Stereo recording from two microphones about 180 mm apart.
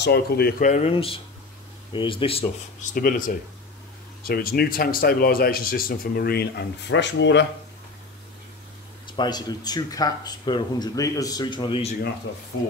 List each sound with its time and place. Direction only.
0.0 s speech: 60° left (ahead or behind); by 7.4 s 80° left
9.0 s speech: 25° left (ahead or behind)